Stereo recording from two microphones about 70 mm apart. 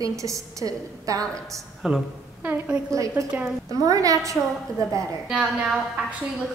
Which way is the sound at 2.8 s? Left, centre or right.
Right.